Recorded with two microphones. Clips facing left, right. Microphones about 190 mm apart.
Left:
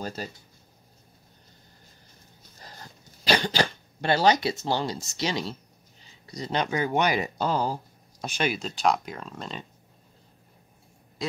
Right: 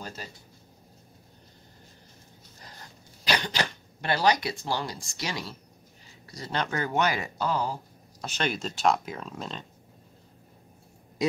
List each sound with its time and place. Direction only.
0.0 s speech: 40° left (ahead or behind)
3.3 s speech: 30° left (ahead or behind)
7.2 s speech: 30° left (ahead or behind)
8.2 s speech: 10° left (ahead or behind)
8.5 s speech: centre (ahead or behind)